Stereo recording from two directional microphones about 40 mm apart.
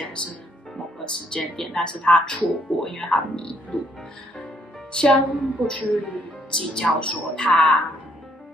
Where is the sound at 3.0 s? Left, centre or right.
Left.